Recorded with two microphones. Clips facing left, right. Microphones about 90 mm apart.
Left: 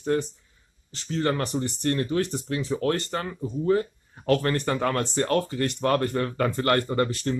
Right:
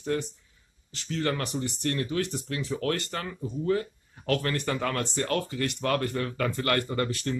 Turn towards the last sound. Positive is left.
turn(degrees=30)  # may be behind; listen again after turning